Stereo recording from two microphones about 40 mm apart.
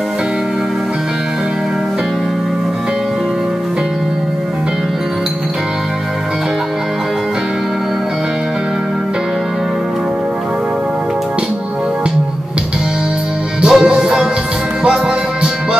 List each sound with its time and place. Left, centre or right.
13.6 s music: centre